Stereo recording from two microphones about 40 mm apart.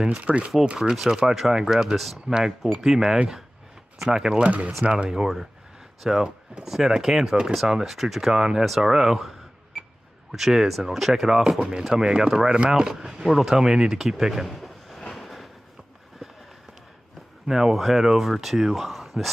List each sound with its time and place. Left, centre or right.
0.2 s speech: right
0.8 s speech: centre
4.4 s speech: right
5.0 s speech: centre
10.3 s speech: centre
12.9 s speech: centre
14.4 s a sound: centre
17.5 s speech: centre